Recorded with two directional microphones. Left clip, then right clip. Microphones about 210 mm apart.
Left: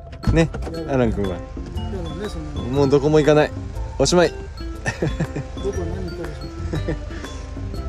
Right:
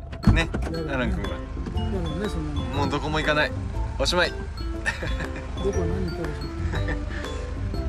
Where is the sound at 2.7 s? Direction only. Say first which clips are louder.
Left 11 dB; 35° left (ahead or behind).